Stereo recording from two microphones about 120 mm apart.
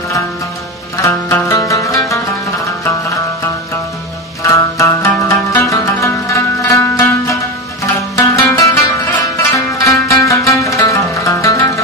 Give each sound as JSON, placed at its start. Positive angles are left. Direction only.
{"t": 1.0, "sound": "zither", "side_deg": 25}
{"t": 4.4, "sound": "zither", "side_deg": 25}